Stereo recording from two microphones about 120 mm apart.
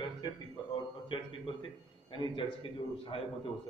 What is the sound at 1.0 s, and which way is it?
A man's voice, 45° left (ahead or behind).